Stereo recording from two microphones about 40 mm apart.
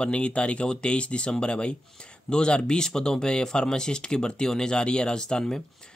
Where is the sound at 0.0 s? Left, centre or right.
Left.